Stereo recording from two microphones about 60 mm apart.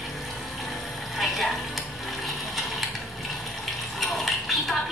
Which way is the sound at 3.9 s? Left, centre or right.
Centre.